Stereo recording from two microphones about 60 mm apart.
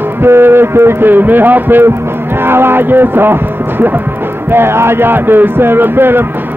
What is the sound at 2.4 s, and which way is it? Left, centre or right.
Speech, right.